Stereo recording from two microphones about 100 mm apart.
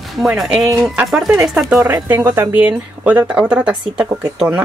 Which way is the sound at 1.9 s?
25° right (ahead or behind).